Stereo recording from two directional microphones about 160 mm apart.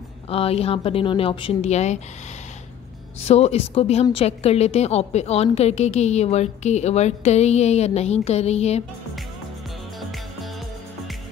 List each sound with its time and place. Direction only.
0.3 s a woman's voice: 35° left (ahead or behind)
3.3 s a woman's voice: 40° left (ahead or behind)
9.9 s music: centre (ahead or behind)